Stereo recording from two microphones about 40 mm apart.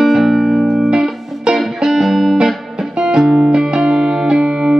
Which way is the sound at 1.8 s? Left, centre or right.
Centre.